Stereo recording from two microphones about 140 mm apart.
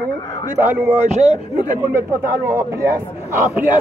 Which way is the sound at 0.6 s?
15° right (ahead or behind).